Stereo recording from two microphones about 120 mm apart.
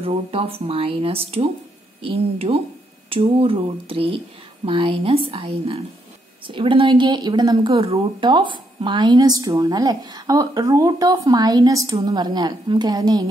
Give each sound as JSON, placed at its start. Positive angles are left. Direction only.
{"t": 0.0, "sound": "a woman's voice", "side_deg": -50}